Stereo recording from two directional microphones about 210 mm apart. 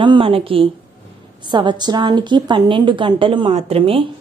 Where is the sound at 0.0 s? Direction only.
25° right (ahead or behind).